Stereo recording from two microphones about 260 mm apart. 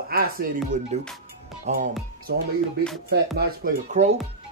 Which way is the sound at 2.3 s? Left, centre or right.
Right.